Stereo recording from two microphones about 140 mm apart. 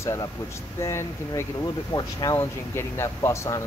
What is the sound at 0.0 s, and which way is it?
Speech, 20° left (ahead or behind).